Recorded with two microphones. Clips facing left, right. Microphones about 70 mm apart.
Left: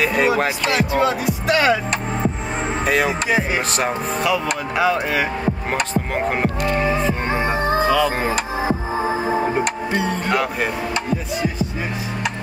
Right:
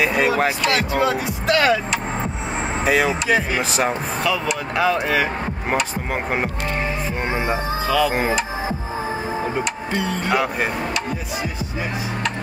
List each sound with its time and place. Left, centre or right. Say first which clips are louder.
0.0 s music: left 1 dB; centre
0.4 s speech: even; centre
2.8 s speech: right 1 dB; centre
3.1 s speech: even; centre
6.6 s music: left 5 dB; left
7.2 s music: left 2 dB; centre
7.5 s chicken: left 5 dB; left
10.0 s speech: right 2 dB; centre